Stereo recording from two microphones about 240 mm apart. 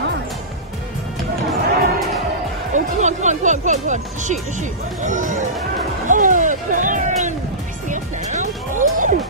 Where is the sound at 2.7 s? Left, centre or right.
Right.